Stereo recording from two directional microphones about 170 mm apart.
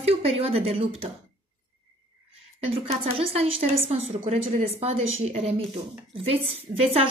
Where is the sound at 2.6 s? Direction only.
40° right (ahead or behind).